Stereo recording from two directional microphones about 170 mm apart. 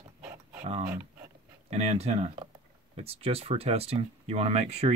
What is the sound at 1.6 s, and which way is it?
Speech, 40° right (ahead or behind).